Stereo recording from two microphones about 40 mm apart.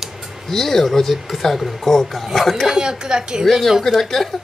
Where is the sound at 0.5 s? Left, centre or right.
Centre.